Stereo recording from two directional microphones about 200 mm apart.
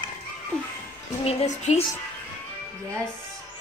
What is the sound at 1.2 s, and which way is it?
Speech, 35° left (ahead or behind).